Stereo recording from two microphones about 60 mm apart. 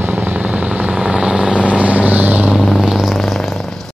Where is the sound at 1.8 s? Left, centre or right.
Right.